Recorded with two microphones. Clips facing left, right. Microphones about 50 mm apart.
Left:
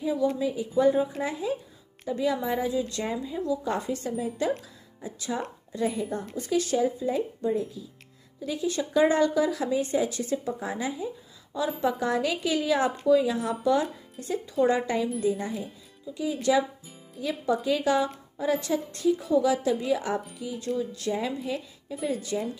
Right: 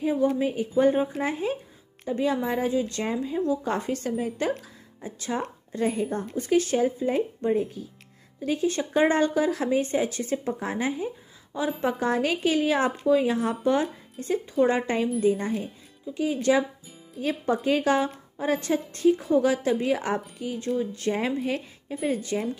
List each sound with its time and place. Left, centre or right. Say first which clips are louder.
0.0 s speech: right 2 dB; right